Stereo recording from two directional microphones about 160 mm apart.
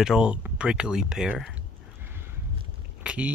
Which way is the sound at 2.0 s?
15° right (ahead or behind).